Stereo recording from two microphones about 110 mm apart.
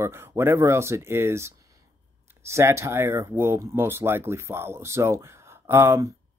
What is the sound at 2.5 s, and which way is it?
Speech, 25° right (ahead or behind).